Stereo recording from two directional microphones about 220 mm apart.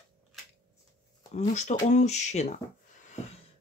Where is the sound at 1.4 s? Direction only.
30° left (ahead or behind).